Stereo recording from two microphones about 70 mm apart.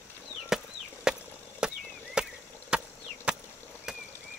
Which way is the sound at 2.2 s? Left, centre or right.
Centre.